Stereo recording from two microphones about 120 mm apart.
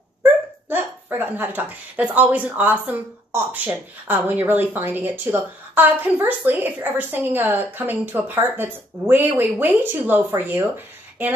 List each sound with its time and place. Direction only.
0.7 s a woman's voice: 15° right (ahead or behind)